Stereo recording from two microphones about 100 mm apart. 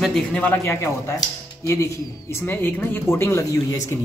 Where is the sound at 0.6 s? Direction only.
25° left (ahead or behind).